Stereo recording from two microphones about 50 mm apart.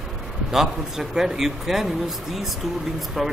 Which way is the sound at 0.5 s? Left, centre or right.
Centre.